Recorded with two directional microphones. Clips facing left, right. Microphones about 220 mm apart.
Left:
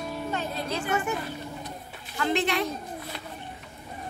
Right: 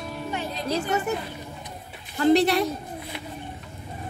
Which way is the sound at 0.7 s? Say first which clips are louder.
Right 4 dB; 40° right (ahead or behind).